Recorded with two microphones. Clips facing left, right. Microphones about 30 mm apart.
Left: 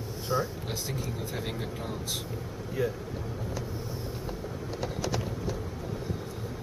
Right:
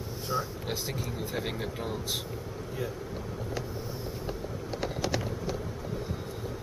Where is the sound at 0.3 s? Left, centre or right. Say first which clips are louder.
Left 2 dB; centre.